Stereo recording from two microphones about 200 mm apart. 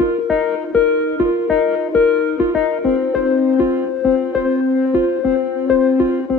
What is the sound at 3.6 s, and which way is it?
Music, 10° right (ahead or behind).